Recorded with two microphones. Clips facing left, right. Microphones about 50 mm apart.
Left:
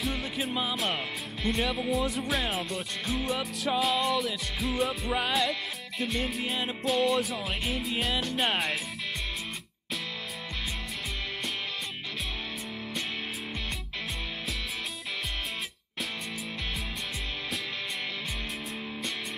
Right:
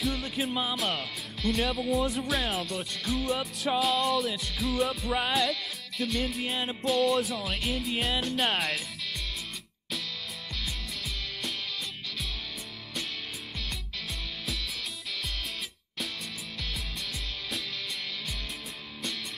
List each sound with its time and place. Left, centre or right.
0.0 s music: centre
0.9 s speech: centre
1.6 s music: centre